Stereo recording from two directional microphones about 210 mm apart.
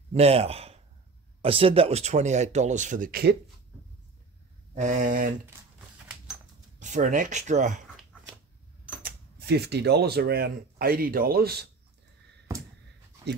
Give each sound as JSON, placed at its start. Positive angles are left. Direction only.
{"t": 0.1, "sound": "speech", "side_deg": -30}
{"t": 4.7, "sound": "speech", "side_deg": -35}
{"t": 6.8, "sound": "speech", "side_deg": -35}
{"t": 9.0, "sound": "speech", "side_deg": -50}